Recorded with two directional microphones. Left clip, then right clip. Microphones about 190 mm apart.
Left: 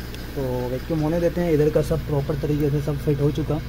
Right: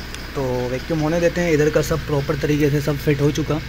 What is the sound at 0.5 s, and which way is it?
Speech, 5° right (ahead or behind).